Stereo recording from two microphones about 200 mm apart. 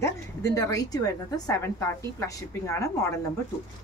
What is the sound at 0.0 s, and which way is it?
A woman's voice, 15° left (ahead or behind).